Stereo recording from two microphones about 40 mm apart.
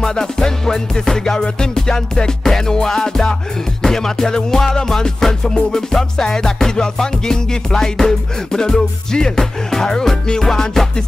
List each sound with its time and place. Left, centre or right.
0.0 s music: centre